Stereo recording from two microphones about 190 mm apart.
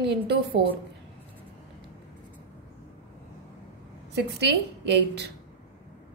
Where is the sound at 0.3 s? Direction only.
60° right (ahead or behind).